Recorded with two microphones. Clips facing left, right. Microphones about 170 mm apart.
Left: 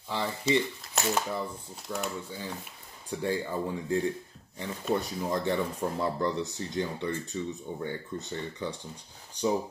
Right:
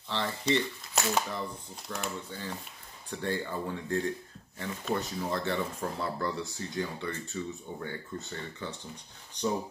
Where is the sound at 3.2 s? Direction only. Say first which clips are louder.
Left 3 dB; 10° left (ahead or behind).